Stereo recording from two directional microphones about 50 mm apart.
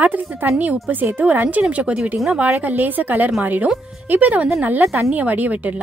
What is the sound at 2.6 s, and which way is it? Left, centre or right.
Speech, right.